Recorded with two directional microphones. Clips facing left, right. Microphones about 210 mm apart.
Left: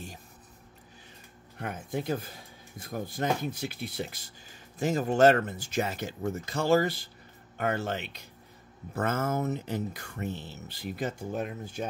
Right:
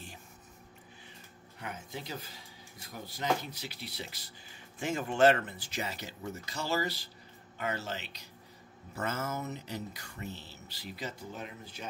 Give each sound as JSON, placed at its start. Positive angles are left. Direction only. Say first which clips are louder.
{"t": 1.6, "sound": "speech", "louder": "left 8 dB", "side_deg": 50}